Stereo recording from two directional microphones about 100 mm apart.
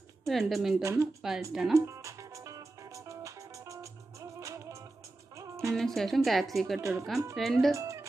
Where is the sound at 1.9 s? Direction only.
30° right (ahead or behind).